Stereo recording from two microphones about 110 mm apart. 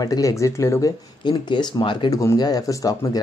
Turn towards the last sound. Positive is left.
turn(degrees=35)  # may be behind; listen again after turning